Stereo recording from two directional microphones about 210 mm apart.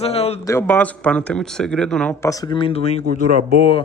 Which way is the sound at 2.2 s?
20° left (ahead or behind).